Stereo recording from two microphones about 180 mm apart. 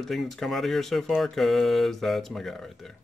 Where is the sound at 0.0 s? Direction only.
Centre (ahead or behind).